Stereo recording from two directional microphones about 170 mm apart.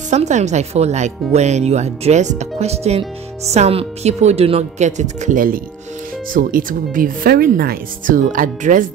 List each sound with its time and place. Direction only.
0.1 s speech: 40° right (ahead or behind)